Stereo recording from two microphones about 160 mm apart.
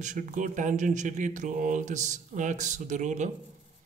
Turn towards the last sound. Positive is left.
turn(degrees=-50)  # may be behind; listen again after turning